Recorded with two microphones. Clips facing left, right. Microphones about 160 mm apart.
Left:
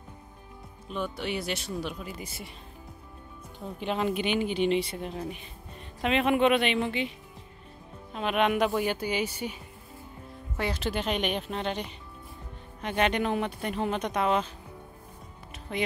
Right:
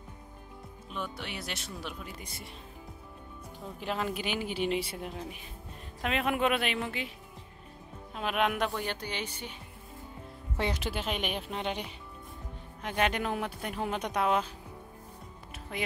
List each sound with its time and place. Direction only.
0.9 s speech: centre (ahead or behind)
3.8 s speech: centre (ahead or behind)
8.1 s speech: 5° right (ahead or behind)
10.6 s speech: 15° right (ahead or behind)
10.9 s speech: 5° right (ahead or behind)
15.7 s speech: 5° right (ahead or behind)